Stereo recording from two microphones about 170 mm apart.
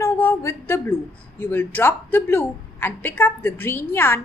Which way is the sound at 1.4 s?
10° left (ahead or behind).